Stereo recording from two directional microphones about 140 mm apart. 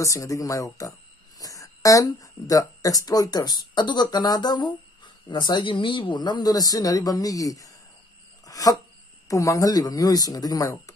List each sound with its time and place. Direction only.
0.0 s speech: 20° left (ahead or behind)
8.5 s a sound: 25° left (ahead or behind)
9.3 s speech: 20° left (ahead or behind)